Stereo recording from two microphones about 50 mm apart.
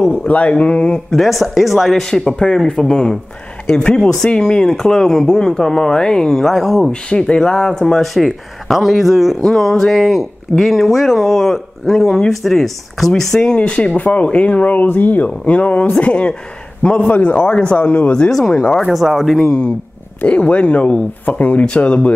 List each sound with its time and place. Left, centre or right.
0.0 s speech: left
1.1 s speech: centre
2.0 s speech: centre
6.9 s speech: centre
13.6 s speech: left
18.9 s speech: centre
20.2 s speech: left